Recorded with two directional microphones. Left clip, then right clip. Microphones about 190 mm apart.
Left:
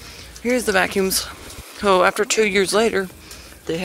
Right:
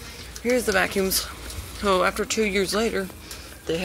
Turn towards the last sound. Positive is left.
turn(degrees=35)  # may be behind; listen again after turning